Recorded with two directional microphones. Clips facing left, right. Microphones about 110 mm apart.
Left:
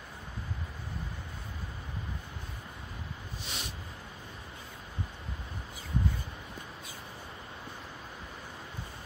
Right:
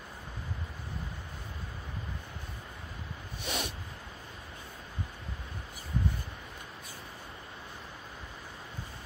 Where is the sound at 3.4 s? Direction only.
60° right (ahead or behind).